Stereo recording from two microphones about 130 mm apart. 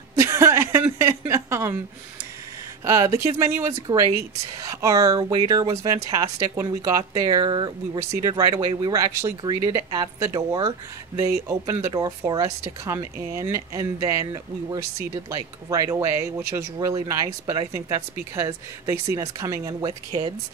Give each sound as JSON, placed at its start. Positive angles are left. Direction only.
{"t": 0.1, "sound": "a sound", "side_deg": -25}
{"t": 2.8, "sound": "speech", "side_deg": -25}
{"t": 4.8, "sound": "speech", "side_deg": -25}